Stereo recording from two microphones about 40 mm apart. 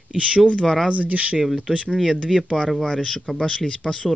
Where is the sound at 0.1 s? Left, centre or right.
Right.